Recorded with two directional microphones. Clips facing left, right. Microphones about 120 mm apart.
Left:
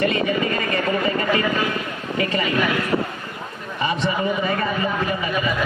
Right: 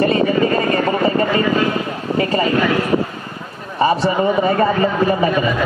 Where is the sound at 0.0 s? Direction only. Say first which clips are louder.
Right 6 dB; 35° right (ahead or behind).